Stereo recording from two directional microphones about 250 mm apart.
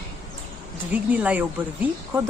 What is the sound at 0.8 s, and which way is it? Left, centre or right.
A woman's voice, centre.